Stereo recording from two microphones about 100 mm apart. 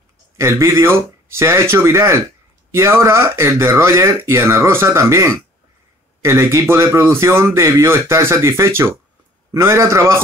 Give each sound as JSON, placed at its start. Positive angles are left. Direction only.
{"t": 0.4, "sound": "speech", "side_deg": -30}